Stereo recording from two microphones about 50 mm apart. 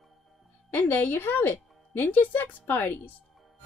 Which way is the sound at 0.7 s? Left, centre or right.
Left.